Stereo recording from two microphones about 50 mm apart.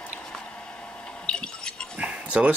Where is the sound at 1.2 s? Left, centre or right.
Centre.